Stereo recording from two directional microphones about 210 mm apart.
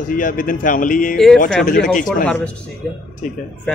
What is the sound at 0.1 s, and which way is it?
Speech, 40° left (ahead or behind).